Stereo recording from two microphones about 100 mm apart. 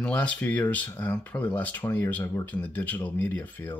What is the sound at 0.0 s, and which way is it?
Speech, 10° left (ahead or behind).